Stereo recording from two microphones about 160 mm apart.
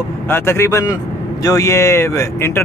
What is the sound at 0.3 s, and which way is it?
A man's voice, 15° left (ahead or behind).